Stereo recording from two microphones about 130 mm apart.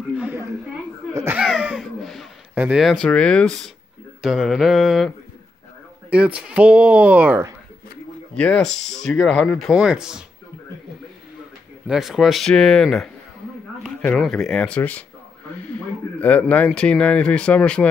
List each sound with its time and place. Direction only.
0.1 s a sound: 15° right (ahead or behind)
1.4 s a sound: 5° right (ahead or behind)
2.5 s speech: 10° right (ahead or behind)
3.0 s speech: 10° left (ahead or behind)
6.0 s speech: 10° right (ahead or behind)
8.4 s speech: 5° left (ahead or behind)
11.9 s speech: 5° right (ahead or behind)